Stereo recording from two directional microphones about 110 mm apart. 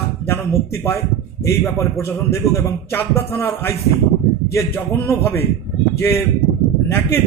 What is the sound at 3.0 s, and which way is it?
A man's voice, 20° left (ahead or behind).